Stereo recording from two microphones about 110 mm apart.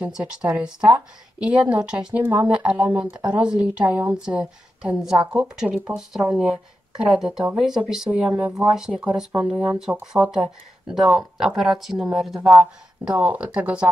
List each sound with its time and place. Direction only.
0.0 s a woman's voice: 10° right (ahead or behind)